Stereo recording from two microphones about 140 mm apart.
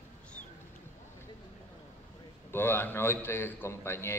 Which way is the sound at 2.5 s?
15° left (ahead or behind).